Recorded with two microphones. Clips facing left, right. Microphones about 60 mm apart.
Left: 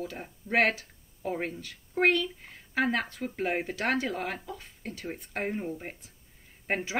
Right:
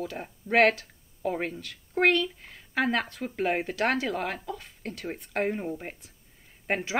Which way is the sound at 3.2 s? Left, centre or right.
Right.